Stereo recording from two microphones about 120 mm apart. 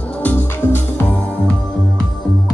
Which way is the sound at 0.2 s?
15° left (ahead or behind).